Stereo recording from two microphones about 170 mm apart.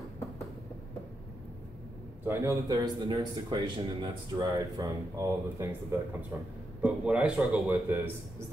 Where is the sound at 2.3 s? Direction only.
15° right (ahead or behind).